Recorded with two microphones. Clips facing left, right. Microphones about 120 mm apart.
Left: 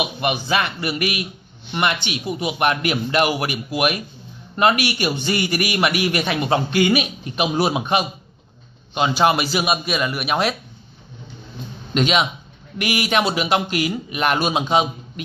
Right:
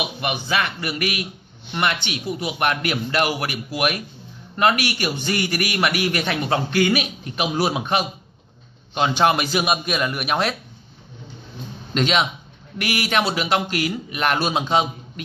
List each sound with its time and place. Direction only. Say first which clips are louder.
0.2 s a man's voice: left 2 dB; 30° left (ahead or behind); by 10.5 s 5° left (ahead or behind)
11.9 s a man's voice: left 2 dB; 10° left (ahead or behind)